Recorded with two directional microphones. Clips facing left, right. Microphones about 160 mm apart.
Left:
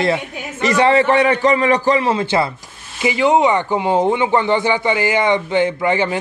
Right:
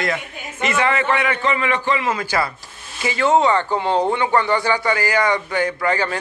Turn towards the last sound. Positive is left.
turn(degrees=20)  # may be behind; listen again after turning